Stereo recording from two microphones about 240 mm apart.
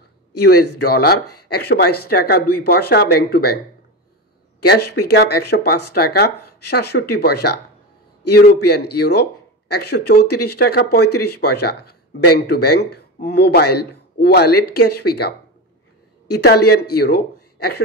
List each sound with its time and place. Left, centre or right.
0.3 s speech: left
4.6 s a man's voice: left